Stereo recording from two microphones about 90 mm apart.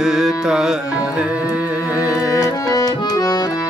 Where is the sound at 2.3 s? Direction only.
45° left (ahead or behind).